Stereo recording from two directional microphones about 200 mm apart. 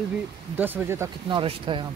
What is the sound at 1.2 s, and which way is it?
Speech, 25° right (ahead or behind).